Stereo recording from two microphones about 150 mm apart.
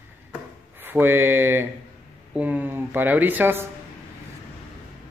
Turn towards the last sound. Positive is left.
turn(degrees=-15)  # may be behind; listen again after turning